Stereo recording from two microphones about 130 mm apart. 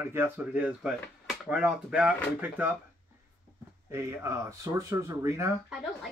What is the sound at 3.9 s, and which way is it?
Speech, 20° right (ahead or behind).